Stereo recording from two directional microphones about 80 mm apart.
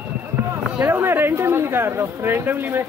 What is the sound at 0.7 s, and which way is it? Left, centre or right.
Speech, right.